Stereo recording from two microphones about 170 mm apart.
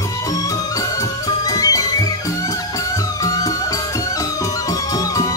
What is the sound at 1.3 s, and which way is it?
Music, 20° left (ahead or behind).